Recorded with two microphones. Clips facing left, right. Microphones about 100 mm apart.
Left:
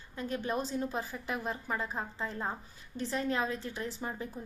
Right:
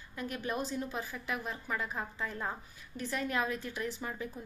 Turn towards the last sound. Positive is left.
turn(degrees=30)  # may be behind; listen again after turning